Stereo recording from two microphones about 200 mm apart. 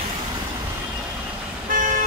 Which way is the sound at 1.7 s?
40° right (ahead or behind).